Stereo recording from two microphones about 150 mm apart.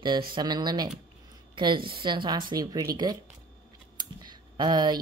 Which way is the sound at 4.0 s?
30° right (ahead or behind).